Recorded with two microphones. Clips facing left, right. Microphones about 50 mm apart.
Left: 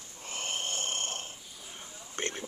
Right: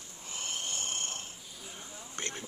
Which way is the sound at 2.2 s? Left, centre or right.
Left.